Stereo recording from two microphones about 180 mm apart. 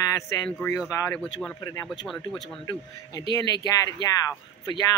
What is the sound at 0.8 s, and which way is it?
Speech, 15° left (ahead or behind).